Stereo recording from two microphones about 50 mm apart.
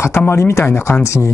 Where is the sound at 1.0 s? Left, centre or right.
Left.